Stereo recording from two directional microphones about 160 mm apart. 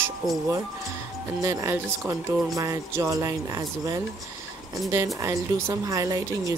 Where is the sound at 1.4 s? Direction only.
20° right (ahead or behind).